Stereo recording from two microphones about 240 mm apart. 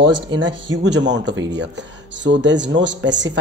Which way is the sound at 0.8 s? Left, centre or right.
Right.